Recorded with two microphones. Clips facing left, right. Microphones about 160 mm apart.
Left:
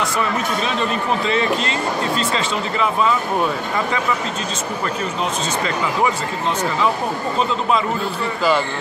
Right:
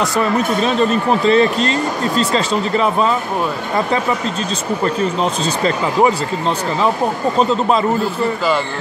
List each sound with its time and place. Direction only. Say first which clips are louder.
0.0 s speech: right 5 dB; 40° right (ahead or behind)
4.8 s speech: right 7 dB; 35° right (ahead or behind)